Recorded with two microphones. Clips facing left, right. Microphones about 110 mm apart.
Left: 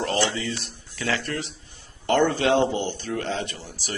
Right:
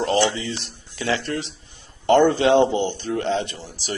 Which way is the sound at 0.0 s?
20° right (ahead or behind).